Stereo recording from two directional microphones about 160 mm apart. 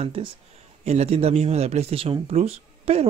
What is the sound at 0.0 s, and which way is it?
Speech, 35° right (ahead or behind).